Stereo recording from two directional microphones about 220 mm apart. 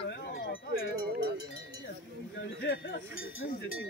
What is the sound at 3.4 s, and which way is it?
Speech, 60° left (ahead or behind).